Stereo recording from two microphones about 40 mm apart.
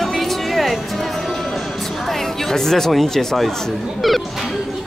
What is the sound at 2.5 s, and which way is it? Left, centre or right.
Speech, centre.